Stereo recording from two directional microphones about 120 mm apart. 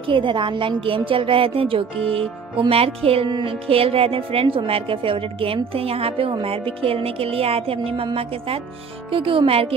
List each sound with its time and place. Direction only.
0.0 s music: 45° right (ahead or behind)